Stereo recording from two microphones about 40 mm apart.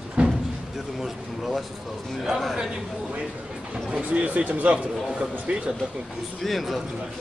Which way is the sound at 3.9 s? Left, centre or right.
Right.